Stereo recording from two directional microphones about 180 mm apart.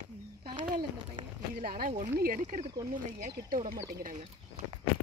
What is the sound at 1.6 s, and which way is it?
Speech, 55° right (ahead or behind).